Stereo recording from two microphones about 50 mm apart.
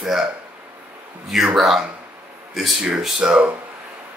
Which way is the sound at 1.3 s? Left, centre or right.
Centre.